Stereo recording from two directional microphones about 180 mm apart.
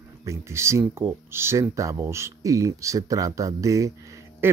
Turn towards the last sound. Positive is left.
turn(degrees=-15)  # may be behind; listen again after turning